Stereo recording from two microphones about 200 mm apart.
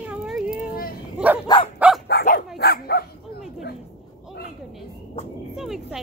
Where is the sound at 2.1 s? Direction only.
55° left (ahead or behind).